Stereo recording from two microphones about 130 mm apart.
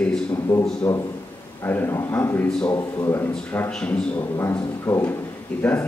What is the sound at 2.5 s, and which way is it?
Speech, 5° left (ahead or behind).